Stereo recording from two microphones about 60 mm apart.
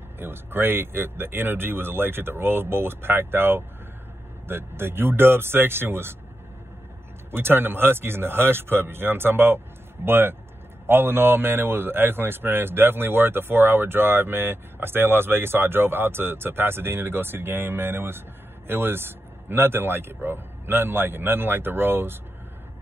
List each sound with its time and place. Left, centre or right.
0.2 s speech: right
7.2 s speech: right